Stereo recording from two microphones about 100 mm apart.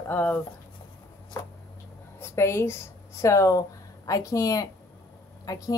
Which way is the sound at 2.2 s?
25° left (ahead or behind).